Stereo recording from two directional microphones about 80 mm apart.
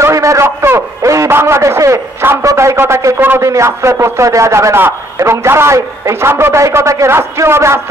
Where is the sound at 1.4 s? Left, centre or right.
Right.